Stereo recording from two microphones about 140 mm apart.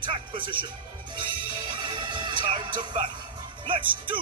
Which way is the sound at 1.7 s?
35° right (ahead or behind).